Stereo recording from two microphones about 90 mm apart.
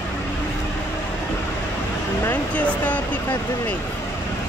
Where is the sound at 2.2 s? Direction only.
20° left (ahead or behind).